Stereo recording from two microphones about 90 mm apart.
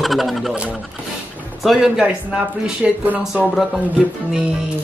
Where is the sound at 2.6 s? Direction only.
15° right (ahead or behind).